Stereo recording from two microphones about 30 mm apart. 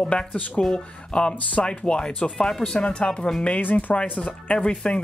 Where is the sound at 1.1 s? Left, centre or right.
Left.